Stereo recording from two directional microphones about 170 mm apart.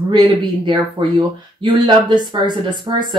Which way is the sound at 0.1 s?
25° right (ahead or behind).